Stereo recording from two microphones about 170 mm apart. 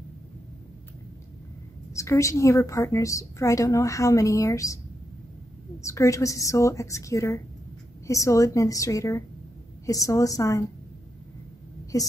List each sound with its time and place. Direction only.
2.0 s a woman's voice: 15° left (ahead or behind)
5.8 s a woman's voice: 15° left (ahead or behind)
11.9 s a woman's voice: 20° left (ahead or behind)